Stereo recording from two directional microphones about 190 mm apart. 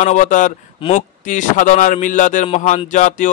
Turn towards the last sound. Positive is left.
turn(degrees=40)  # may be behind; listen again after turning